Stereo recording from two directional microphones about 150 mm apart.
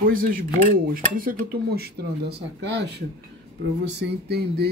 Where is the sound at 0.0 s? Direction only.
70° right (ahead or behind); by 2.3 s 90° right.